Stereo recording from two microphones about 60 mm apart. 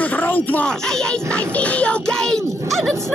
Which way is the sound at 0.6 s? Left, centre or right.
Centre.